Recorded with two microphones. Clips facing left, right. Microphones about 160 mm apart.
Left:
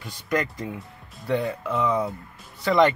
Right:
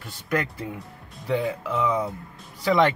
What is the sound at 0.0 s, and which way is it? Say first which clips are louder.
Speech: left 1 dB; 5° right (ahead or behind).